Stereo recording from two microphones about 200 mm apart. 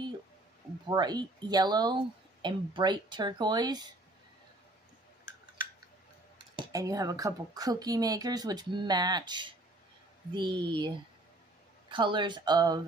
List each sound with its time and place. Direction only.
0.8 s a woman's voice: 20° right (ahead or behind)
6.5 s a woman's voice: 20° right (ahead or behind)
11.9 s a woman's voice: 25° right (ahead or behind)